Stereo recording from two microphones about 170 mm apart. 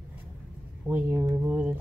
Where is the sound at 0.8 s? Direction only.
10° right (ahead or behind).